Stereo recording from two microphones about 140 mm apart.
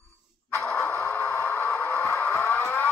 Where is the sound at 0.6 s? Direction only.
5° left (ahead or behind).